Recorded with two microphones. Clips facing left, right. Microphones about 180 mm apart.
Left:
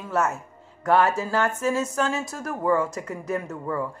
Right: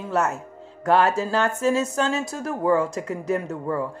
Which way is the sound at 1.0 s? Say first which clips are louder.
Right 2 dB; 25° right (ahead or behind).